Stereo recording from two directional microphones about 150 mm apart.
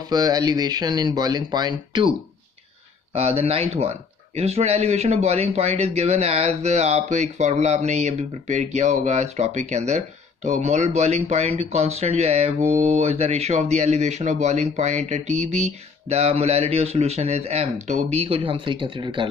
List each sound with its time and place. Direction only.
0.1 s speech: 25° right (ahead or behind)
3.1 s speech: 45° right (ahead or behind)